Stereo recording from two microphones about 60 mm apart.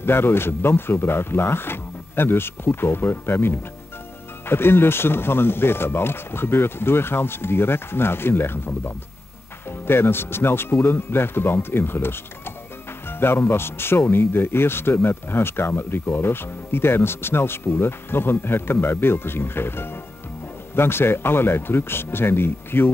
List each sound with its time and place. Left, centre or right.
0.0 s speech: left